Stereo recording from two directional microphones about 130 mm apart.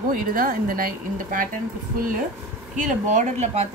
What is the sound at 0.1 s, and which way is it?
A woman's voice, 90° right.